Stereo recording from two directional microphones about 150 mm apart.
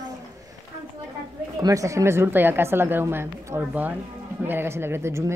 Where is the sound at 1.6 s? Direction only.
25° right (ahead or behind).